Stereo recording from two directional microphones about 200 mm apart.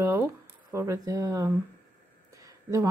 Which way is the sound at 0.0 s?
15° right (ahead or behind).